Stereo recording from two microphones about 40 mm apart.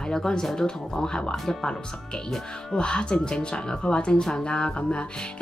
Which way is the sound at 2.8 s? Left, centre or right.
Left.